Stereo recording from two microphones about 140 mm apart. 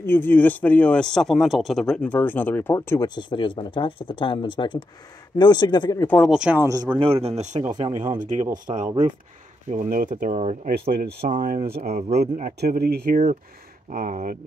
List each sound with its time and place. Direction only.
0.0 s a man's voice: 15° left (ahead or behind)
3.2 s speech: 35° left (ahead or behind)
6.0 s a man's voice: 5° left (ahead or behind)
6.3 s speech: 5° right (ahead or behind)
6.6 s speech: 25° right (ahead or behind)
7.0 s a man's voice: 45° right (ahead or behind); by 10.3 s 80° right
10.3 s speech: 60° right (ahead or behind); by 13.2 s 90° right
13.8 s speech: 70° right (ahead or behind)